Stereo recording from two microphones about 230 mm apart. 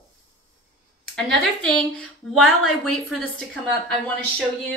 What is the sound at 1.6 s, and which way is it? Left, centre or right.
A woman's voice, centre.